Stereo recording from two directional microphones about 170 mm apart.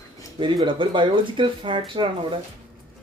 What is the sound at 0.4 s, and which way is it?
Speech, 30° right (ahead or behind).